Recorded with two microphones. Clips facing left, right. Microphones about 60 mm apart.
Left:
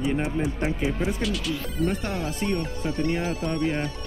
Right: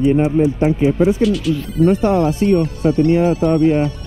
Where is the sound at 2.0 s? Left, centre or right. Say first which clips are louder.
Right 14 dB; right.